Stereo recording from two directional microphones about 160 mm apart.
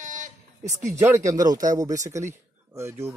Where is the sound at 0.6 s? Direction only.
20° right (ahead or behind).